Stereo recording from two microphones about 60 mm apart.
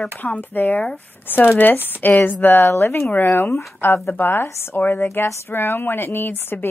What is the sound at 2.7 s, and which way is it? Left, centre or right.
A woman's voice, left.